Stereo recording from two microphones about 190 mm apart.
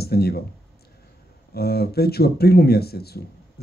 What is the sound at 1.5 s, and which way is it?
Speech, 55° left (ahead or behind).